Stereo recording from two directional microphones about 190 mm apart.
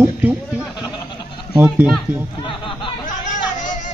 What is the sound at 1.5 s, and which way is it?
Speech, 10° right (ahead or behind).